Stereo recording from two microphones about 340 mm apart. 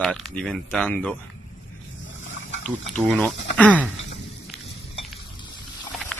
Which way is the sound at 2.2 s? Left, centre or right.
Left.